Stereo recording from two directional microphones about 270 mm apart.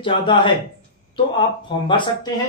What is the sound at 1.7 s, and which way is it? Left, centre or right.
Speech, centre.